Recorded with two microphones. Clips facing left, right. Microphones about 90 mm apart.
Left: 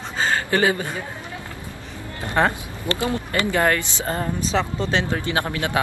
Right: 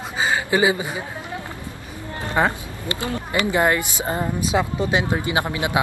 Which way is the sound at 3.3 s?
15° right (ahead or behind).